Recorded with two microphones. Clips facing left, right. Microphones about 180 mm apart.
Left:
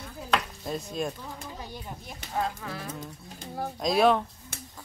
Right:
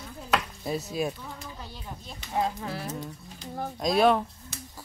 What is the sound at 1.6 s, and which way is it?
Speech, 15° left (ahead or behind).